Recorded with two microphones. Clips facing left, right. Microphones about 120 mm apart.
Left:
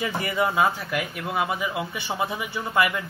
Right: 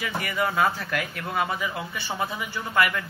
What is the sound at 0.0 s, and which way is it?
Speech, 25° left (ahead or behind).